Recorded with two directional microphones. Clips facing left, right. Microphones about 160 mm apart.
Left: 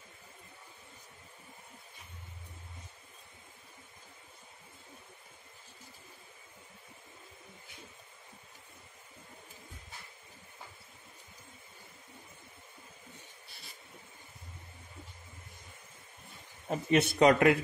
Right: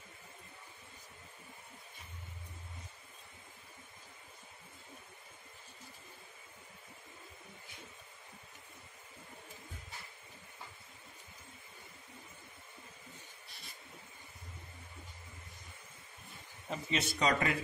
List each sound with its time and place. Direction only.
16.6 s speech: 55° left (ahead or behind)